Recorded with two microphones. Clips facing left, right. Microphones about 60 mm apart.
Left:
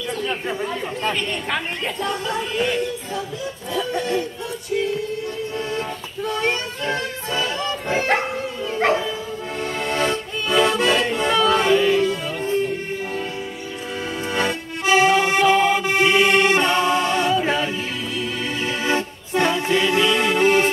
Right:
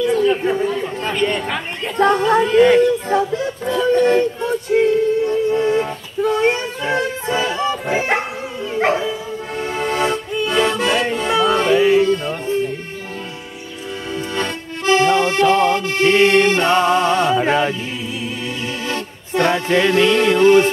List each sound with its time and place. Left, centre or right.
0.1 s speech: centre
2.0 s a woman's voice: right
2.4 s speech: right
4.0 s music: right; by 11.7 s centre
11.7 s music: centre
14.3 s accordion: centre
16.1 s a woman's voice: right
16.6 s music: right
17.5 s a woman's voice: right
19.4 s music: right
20.3 s speech: centre